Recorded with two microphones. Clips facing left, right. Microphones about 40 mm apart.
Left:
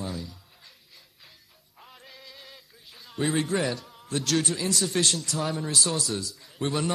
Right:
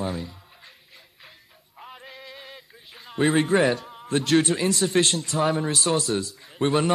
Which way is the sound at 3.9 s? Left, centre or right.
Right.